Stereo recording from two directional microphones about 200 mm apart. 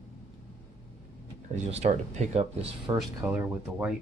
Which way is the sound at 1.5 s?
30° right (ahead or behind).